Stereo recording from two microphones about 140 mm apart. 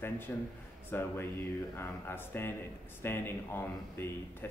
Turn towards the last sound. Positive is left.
turn(degrees=15)  # may be behind; listen again after turning